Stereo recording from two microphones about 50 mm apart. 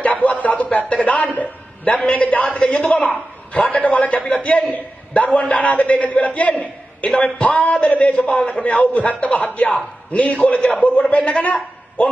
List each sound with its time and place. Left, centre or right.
0.0 s a sound: left
0.7 s a man's voice: left
7.2 s a man's voice: centre
7.4 s a man's voice: left